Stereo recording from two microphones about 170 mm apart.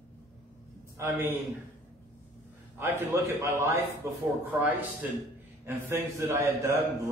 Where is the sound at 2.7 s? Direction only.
15° right (ahead or behind).